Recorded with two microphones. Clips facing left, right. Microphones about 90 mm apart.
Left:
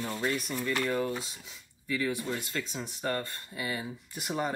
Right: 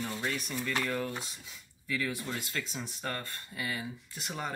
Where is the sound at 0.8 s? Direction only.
15° left (ahead or behind).